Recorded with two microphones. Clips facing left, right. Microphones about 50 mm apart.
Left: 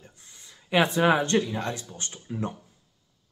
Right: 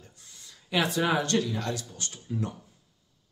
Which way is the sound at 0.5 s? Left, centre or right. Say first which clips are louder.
Left 5 dB; left.